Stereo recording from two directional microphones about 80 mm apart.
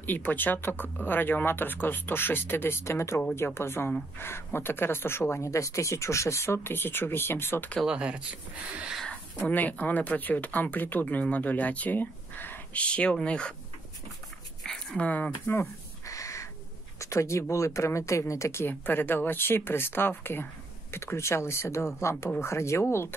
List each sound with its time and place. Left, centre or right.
0.0 s speech: left
7.8 s speech: centre
9.5 s speech: left
14.6 s dog: centre
15.0 s speech: centre
16.1 s crow: left
17.0 s speech: left